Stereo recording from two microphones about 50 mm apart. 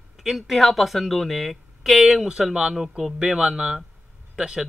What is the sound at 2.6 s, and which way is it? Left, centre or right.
Speech, centre.